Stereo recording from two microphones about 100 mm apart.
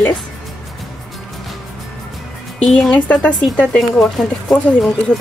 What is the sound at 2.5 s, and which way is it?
Speech, 10° left (ahead or behind).